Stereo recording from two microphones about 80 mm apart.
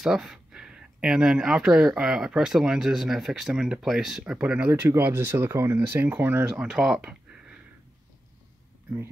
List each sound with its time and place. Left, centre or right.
0.0 s speech: centre; by 6.7 s right
6.7 s speech: centre